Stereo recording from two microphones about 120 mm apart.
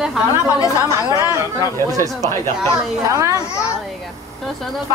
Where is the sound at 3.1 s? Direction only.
25° right (ahead or behind).